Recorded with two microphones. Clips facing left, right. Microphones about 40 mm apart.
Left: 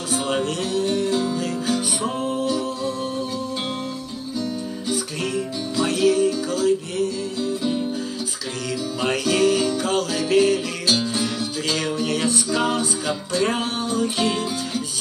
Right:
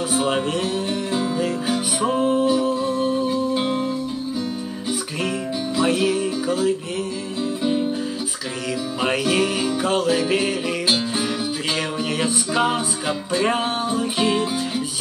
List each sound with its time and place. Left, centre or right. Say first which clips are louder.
0.1 s music: even; centre
5.8 s music: left 2 dB; centre
9.0 s music: left 1 dB; centre